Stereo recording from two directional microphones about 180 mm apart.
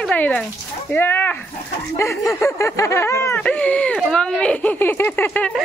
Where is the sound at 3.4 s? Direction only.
5° left (ahead or behind).